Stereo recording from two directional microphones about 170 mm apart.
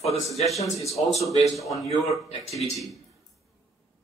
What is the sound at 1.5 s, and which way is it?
Speech, centre (ahead or behind).